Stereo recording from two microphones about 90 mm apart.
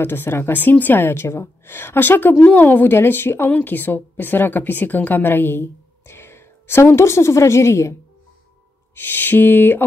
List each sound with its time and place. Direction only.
0.0 s a woman's voice: 25° left (ahead or behind)
8.9 s a woman's voice: 25° left (ahead or behind)